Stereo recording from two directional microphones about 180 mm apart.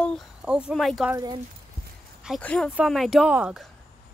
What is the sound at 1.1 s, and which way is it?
Speech, 20° right (ahead or behind).